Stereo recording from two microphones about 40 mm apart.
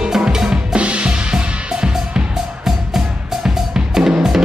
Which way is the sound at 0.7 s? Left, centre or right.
Right.